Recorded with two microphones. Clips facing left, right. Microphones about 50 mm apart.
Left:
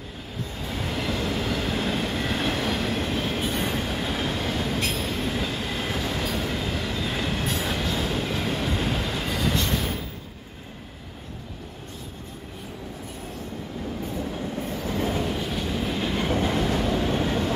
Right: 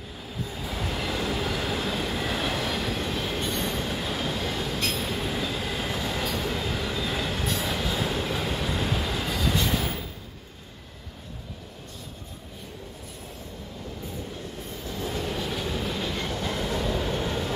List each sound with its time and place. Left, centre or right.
0.4 s train: centre
9.6 s train: centre
15.2 s train: centre
16.0 s train: centre
16.3 s train: left
16.9 s vehicle: left